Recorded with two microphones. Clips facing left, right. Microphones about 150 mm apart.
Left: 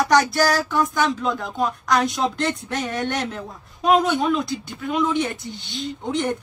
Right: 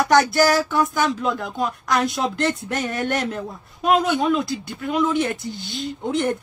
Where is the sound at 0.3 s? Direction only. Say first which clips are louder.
Right 2 dB; 5° right (ahead or behind).